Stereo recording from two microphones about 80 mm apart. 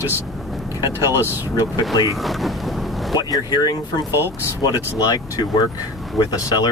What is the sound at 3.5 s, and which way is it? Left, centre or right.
Speech, left.